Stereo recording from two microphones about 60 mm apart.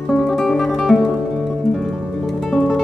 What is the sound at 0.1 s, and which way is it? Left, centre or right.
Music, centre.